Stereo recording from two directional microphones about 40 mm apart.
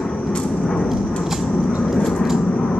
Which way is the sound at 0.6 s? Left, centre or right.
Centre.